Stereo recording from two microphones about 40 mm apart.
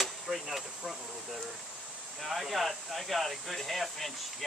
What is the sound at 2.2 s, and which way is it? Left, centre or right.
Speech, centre.